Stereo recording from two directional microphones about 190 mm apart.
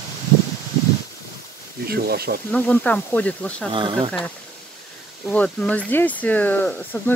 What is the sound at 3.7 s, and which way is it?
Speech, 25° right (ahead or behind).